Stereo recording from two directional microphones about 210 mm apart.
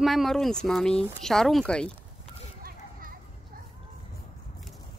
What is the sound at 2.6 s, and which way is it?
Children playing, 40° right (ahead or behind).